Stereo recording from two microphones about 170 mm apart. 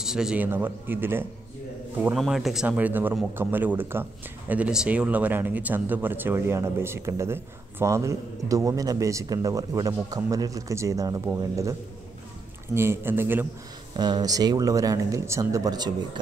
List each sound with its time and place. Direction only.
0.0 s speech: 5° right (ahead or behind)
2.1 s speech: centre (ahead or behind); by 11.7 s 15° right (ahead or behind)
12.7 s speech: 15° right (ahead or behind)
13.9 s speech: 25° right (ahead or behind)